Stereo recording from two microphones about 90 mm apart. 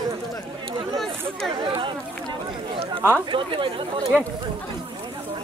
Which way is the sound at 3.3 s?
70° right (ahead or behind).